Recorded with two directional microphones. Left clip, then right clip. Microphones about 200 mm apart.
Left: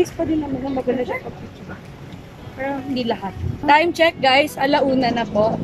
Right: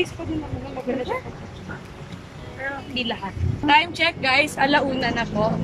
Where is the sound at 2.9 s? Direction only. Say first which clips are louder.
Left 4 dB; 25° left (ahead or behind).